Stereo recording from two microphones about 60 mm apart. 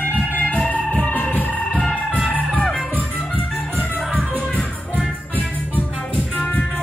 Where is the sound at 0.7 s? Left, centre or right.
Centre.